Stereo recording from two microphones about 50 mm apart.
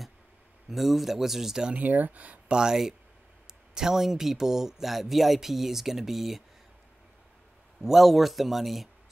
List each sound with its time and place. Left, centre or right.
0.7 s speech: centre
1.7 s speech: right
2.5 s speech: centre
7.8 s speech: centre